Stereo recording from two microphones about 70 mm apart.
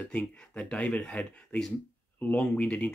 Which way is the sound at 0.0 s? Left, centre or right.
Left.